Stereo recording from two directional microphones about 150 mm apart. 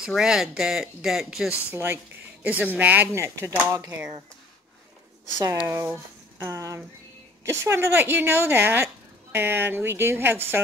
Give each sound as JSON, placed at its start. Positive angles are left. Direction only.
{"t": 0.0, "sound": "speech", "side_deg": -5}
{"t": 1.7, "sound": "speech", "side_deg": -15}
{"t": 5.7, "sound": "speech", "side_deg": -20}